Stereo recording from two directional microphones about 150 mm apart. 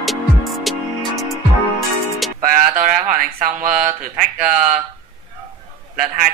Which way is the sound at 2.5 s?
60° right (ahead or behind).